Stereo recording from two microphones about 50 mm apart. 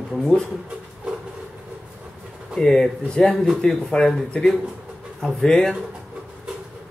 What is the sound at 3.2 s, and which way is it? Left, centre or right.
Speech, centre.